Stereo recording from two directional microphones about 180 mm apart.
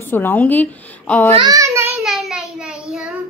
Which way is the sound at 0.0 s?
10° left (ahead or behind).